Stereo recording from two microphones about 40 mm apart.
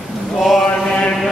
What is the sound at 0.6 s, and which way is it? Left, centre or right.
Mantra, left.